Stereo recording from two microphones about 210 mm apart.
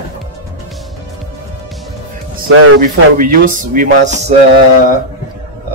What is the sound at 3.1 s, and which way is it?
Speech, 40° right (ahead or behind).